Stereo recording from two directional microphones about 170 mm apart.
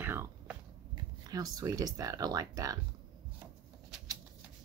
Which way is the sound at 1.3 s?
20° right (ahead or behind).